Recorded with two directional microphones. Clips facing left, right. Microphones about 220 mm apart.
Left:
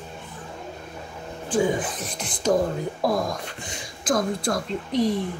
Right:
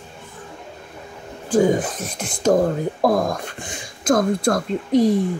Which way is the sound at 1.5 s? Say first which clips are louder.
Right 6 dB; 45° right (ahead or behind).